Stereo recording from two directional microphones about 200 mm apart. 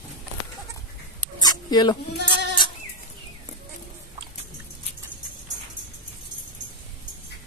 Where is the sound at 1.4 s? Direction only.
20° left (ahead or behind).